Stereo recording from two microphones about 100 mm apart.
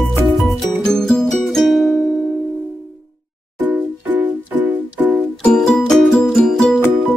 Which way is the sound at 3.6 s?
15° right (ahead or behind).